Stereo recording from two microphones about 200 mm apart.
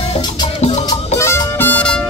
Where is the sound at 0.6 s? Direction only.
35° left (ahead or behind).